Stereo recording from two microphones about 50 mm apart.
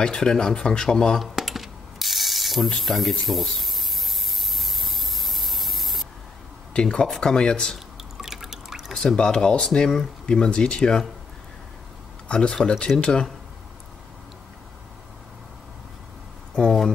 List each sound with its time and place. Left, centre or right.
0.0 s speech: centre
1.2 s mechanisms: centre
2.8 s a sound: centre
6.7 s speech: centre
8.0 s drip: centre
8.9 s speech: centre
12.3 s speech: centre